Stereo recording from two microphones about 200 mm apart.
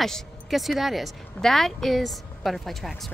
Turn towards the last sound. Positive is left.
turn(degrees=0)  # may be behind; listen again after turning